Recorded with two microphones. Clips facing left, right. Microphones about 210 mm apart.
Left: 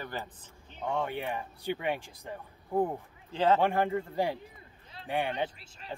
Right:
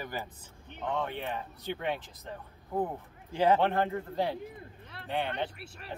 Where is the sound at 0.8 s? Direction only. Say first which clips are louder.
Left 1 dB; 10° left (ahead or behind).